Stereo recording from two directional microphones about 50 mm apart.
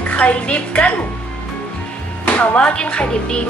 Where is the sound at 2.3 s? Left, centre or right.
Left.